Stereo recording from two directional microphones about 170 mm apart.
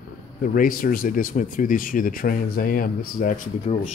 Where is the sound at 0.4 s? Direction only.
55° left (ahead or behind).